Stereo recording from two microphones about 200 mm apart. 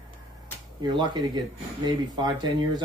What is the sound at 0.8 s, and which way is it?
Speech, 20° right (ahead or behind).